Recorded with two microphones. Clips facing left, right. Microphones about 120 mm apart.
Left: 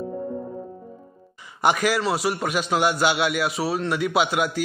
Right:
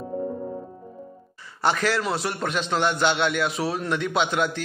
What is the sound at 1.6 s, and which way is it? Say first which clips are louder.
A man's voice: left 2 dB; 15° left (ahead or behind).